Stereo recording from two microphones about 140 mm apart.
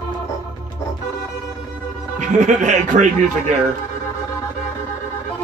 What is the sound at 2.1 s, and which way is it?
Speech, 60° right (ahead or behind).